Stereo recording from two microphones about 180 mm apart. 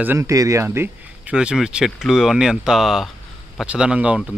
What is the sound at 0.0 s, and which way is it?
Speech, 15° right (ahead or behind).